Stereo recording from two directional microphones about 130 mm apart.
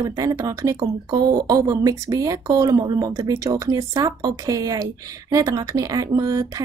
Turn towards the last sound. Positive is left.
turn(degrees=-30)  # may be behind; listen again after turning